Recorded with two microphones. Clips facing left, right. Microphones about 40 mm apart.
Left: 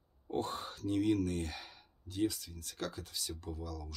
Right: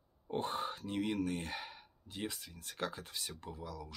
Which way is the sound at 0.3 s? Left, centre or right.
Right.